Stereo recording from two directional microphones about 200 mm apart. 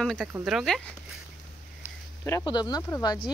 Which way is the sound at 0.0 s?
Centre (ahead or behind).